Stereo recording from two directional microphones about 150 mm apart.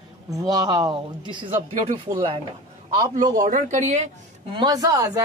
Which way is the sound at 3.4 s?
60° right (ahead or behind).